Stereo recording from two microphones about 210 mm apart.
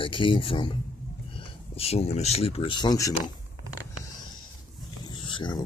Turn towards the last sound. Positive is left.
turn(degrees=20)  # may be behind; listen again after turning